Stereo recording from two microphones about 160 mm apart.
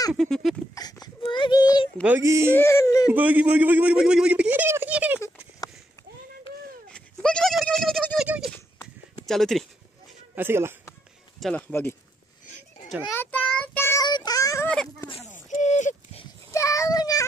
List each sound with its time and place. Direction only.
0.2 s a sound: centre (ahead or behind)
1.0 s speech: 30° left (ahead or behind)
2.0 s speech: 15° right (ahead or behind)
2.5 s speech: 15° left (ahead or behind)
3.1 s speech: 10° right (ahead or behind)
6.9 s goat: 5° left (ahead or behind)
9.2 s speech: centre (ahead or behind)
10.3 s speech: 15° right (ahead or behind)
11.3 s speech: centre (ahead or behind)
13.1 s child singing: 10° left (ahead or behind)
14.0 s child singing: 25° left (ahead or behind)
14.7 s a sound: 5° left (ahead or behind)
15.3 s a sound: 50° left (ahead or behind)
16.5 s child singing: 20° left (ahead or behind)